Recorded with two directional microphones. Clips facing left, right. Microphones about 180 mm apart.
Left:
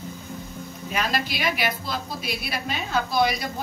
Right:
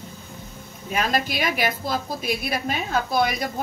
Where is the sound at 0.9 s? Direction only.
50° right (ahead or behind).